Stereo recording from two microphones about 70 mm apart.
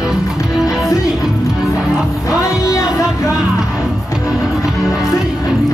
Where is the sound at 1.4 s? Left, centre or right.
Left.